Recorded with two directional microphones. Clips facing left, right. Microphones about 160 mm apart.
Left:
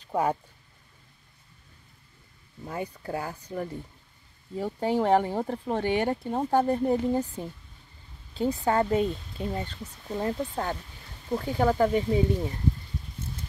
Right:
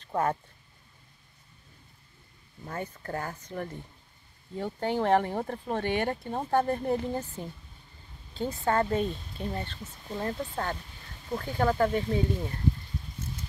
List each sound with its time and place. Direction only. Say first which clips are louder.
0.0 s speech: left 2 dB; 10° left (ahead or behind)
2.6 s speech: left 3 dB; 15° left (ahead or behind)